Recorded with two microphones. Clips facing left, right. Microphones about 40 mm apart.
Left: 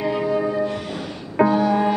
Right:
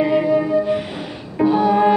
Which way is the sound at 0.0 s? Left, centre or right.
Centre.